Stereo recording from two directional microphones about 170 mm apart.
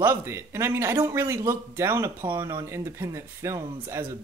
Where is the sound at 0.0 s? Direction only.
15° right (ahead or behind).